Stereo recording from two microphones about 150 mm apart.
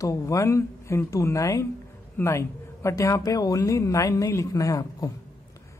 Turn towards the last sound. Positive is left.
turn(degrees=25)  # may be behind; listen again after turning